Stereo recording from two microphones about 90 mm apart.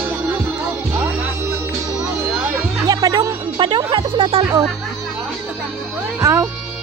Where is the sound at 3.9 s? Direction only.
70° right (ahead or behind).